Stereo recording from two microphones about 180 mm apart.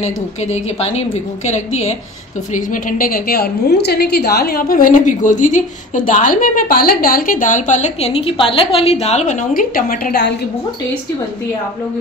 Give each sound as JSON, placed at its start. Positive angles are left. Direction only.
{"t": 0.0, "sound": "a woman's voice", "side_deg": 40}
{"t": 2.5, "sound": "a woman's voice", "side_deg": 50}